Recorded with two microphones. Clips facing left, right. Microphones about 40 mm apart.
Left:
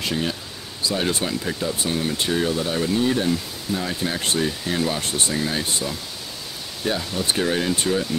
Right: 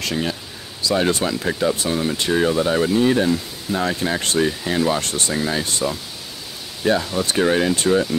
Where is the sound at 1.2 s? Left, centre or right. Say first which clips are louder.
Right 3 dB; right.